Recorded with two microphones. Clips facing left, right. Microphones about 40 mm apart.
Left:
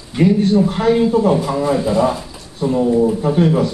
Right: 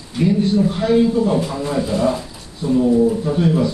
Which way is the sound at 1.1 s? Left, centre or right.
Left.